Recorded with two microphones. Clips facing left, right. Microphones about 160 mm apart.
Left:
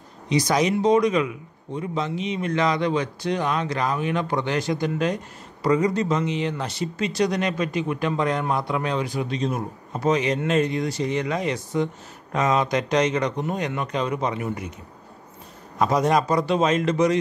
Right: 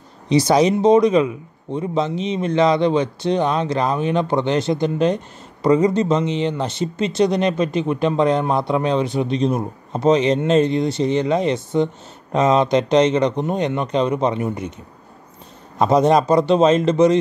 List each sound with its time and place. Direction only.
0.3 s speech: 30° right (ahead or behind)
15.8 s speech: 25° right (ahead or behind)